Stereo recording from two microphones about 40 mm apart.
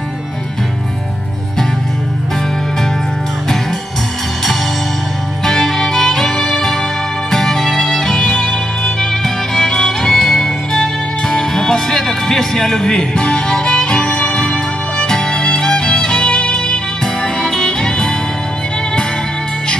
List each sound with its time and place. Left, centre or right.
5.4 s music: centre